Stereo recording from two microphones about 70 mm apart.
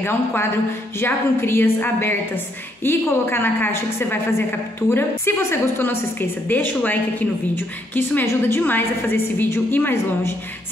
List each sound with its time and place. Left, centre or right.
0.0 s a woman's voice: left
8.3 s a woman's voice: left
8.6 s a woman's voice: left